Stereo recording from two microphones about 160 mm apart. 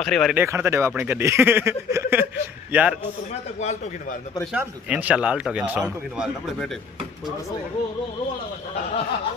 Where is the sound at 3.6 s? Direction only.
45° left (ahead or behind).